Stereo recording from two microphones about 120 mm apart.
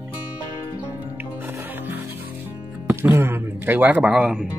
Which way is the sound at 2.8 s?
20° right (ahead or behind).